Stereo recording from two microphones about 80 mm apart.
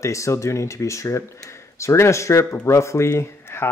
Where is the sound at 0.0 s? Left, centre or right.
Left.